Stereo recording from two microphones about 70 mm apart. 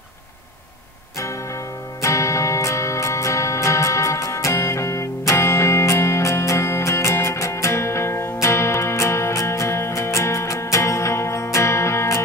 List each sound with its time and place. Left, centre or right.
2.0 s music: left